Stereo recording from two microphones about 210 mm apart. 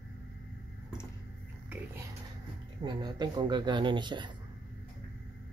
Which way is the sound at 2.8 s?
20° right (ahead or behind).